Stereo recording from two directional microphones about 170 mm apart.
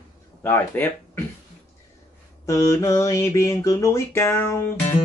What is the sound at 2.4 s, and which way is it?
Speech, 20° left (ahead or behind).